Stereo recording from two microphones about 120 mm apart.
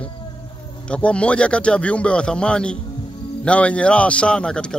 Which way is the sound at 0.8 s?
10° left (ahead or behind).